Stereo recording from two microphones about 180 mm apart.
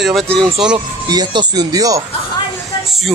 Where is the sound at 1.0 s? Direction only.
20° right (ahead or behind).